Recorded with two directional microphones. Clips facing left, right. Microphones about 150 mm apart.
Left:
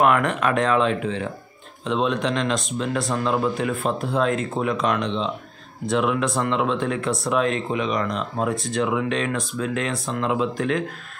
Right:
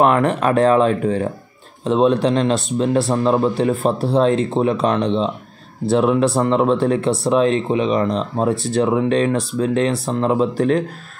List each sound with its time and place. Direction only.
0.0 s speech: 35° right (ahead or behind)